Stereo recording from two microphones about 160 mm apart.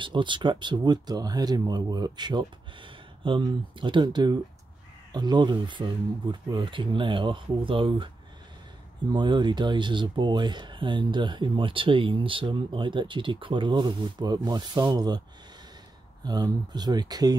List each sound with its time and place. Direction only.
0.0 s speech: 30° right (ahead or behind)
9.1 s speech: 30° right (ahead or behind)
16.3 s speech: 25° right (ahead or behind)